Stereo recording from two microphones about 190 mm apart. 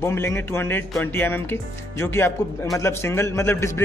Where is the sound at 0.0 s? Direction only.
15° left (ahead or behind).